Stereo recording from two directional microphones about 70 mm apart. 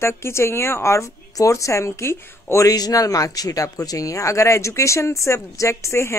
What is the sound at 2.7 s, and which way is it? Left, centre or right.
Speech, left.